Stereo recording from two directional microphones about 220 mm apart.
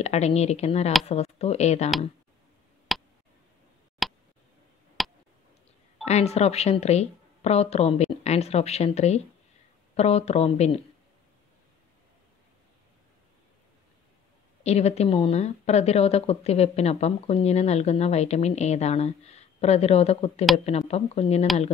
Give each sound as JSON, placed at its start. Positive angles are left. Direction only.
{"t": 0.0, "sound": "a woman's voice", "side_deg": 30}
{"t": 2.9, "sound": "a sound", "side_deg": 0}
{"t": 4.0, "sound": "tick", "side_deg": 0}
{"t": 5.0, "sound": "a sound", "side_deg": 0}
{"t": 6.0, "sound": "a woman's voice", "side_deg": 30}
{"t": 14.6, "sound": "a woman's voice", "side_deg": 30}